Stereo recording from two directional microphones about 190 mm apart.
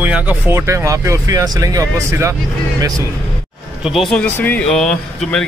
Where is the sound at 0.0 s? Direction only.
10° right (ahead or behind).